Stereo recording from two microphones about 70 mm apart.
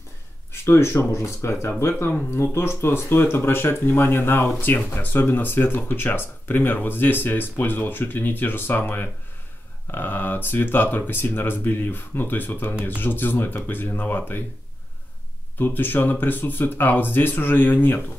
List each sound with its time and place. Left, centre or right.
0.5 s speech: left
15.6 s speech: left